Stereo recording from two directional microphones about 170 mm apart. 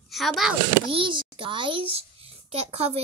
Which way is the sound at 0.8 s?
30° right (ahead or behind).